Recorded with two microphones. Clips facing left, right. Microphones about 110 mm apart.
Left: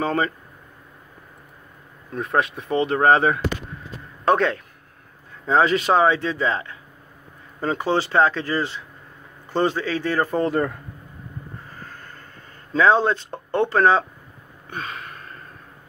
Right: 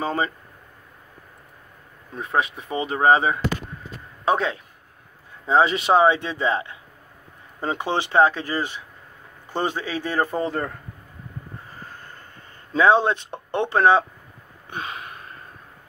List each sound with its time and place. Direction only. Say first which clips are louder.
0.0 s speech: left 2 dB; 10° right (ahead or behind)
2.1 s a man's voice: left 2 dB; 5° right (ahead or behind); by 10.4 s 20° right (ahead or behind)
12.7 s speech: even; 15° right (ahead or behind)
14.7 s gasp: even; 20° right (ahead or behind)